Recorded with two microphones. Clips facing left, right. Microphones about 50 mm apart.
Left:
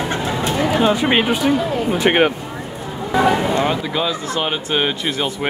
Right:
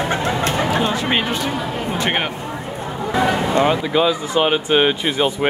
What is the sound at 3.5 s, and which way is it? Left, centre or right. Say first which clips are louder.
Speech: right 3 dB; centre.